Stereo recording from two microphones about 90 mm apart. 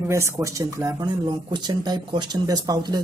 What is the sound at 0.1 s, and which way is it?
Speech, 35° right (ahead or behind).